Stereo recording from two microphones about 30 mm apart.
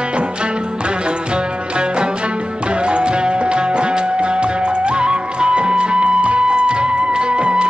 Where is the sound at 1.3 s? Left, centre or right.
Right.